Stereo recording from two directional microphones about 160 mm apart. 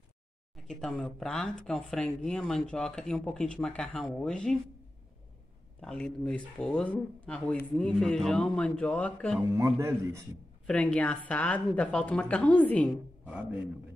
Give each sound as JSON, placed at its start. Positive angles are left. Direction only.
{"t": 0.7, "sound": "speech", "side_deg": 5}
{"t": 5.8, "sound": "speech", "side_deg": 5}
{"t": 9.5, "sound": "speech", "side_deg": -15}
{"t": 10.7, "sound": "a woman's voice", "side_deg": 5}
{"t": 12.9, "sound": "a woman's voice", "side_deg": -10}